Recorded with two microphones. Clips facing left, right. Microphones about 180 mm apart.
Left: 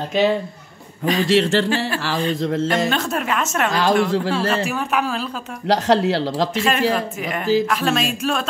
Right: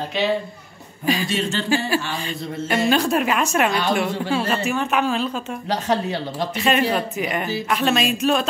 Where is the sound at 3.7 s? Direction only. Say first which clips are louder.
Left 4 dB; 90° left.